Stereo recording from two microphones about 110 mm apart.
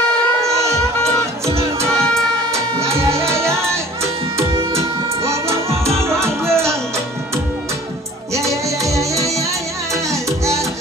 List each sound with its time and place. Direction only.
0.4 s music: 25° right (ahead or behind)
1.9 s music: 5° left (ahead or behind)
3.2 s music: 25° right (ahead or behind)
8.4 s music: 30° right (ahead or behind)